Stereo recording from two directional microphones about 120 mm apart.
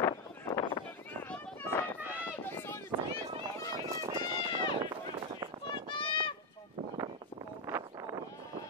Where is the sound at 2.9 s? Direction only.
40° right (ahead or behind).